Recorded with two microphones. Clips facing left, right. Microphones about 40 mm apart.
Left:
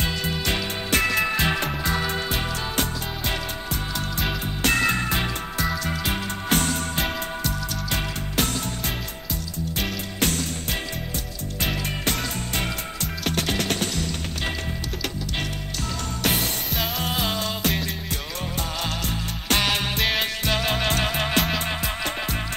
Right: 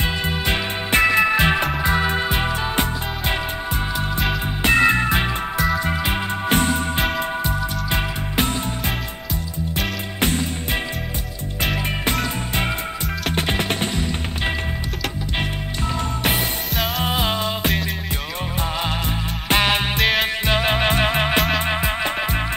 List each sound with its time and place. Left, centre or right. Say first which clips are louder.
0.0 s music: right 3 dB; right
4.6 s music: right 6 dB; right
10.2 s music: right 4 dB; right
17.0 s music: right 5 dB; right
19.5 s music: right 4 dB; right
20.0 s music: right 5 dB; centre
20.4 s music: right 4 dB; right